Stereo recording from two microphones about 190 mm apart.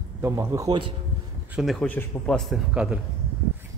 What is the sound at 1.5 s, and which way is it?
A man's voice, centre (ahead or behind).